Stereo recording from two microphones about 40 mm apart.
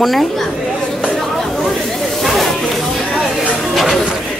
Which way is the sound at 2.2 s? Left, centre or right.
Centre.